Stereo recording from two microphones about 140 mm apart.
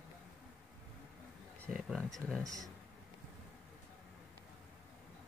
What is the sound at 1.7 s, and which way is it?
Speech, 5° right (ahead or behind).